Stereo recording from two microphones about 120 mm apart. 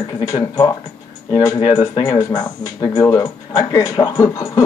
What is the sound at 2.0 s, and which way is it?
Speech, 35° left (ahead or behind).